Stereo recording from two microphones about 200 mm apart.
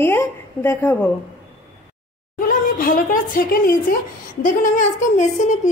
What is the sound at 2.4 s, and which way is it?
A woman's voice, 45° left (ahead or behind).